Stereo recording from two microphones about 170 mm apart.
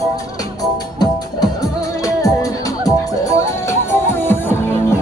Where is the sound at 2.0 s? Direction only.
20° left (ahead or behind).